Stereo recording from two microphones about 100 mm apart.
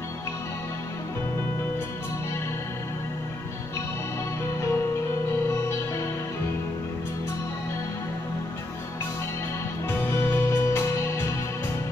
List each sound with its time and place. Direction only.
9.8 s music: 25° left (ahead or behind)